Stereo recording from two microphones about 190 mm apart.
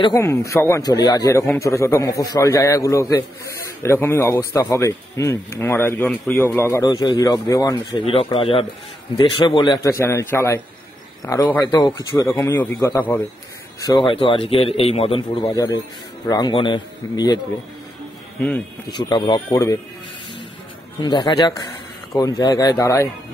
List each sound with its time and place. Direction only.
0.0 s a man's voice: 15° left (ahead or behind)
8.0 s a man's voice: 30° left (ahead or behind)
15.5 s a man's voice: 15° left (ahead or behind)
18.9 s a man's voice: 25° left (ahead or behind)
21.0 s a man's voice: 25° left (ahead or behind)